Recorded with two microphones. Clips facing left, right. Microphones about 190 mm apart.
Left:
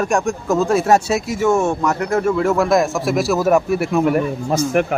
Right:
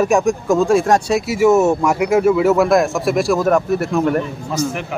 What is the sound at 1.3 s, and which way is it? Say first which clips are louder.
Speech: right 5 dB; 5° right (ahead or behind).